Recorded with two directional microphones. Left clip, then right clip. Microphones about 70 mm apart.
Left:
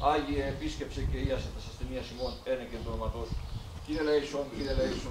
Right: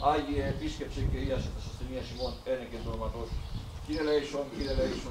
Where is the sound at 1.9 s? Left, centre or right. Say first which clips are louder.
Even; centre.